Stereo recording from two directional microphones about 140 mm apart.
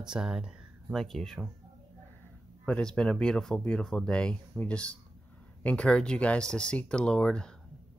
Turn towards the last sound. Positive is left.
turn(degrees=5)  # may be behind; listen again after turning